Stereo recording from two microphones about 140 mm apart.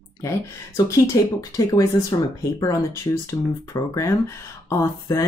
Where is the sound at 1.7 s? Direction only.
25° left (ahead or behind).